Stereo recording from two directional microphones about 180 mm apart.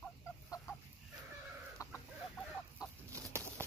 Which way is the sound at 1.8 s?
20° left (ahead or behind).